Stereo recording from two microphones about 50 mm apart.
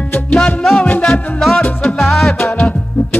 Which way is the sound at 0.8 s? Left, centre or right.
Left.